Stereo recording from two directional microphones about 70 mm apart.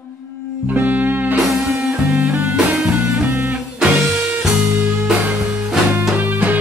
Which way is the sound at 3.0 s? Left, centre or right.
Right.